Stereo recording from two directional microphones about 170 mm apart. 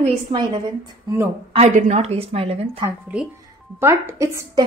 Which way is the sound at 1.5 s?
45° right (ahead or behind).